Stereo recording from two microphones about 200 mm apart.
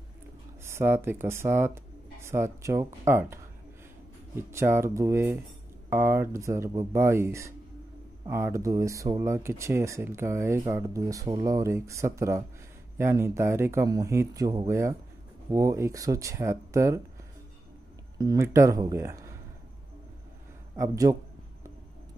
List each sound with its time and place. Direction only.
0.7 s speech: 10° right (ahead or behind)
4.4 s speech: 15° right (ahead or behind)
18.1 s speech: 15° right (ahead or behind)
20.7 s speech: 15° right (ahead or behind)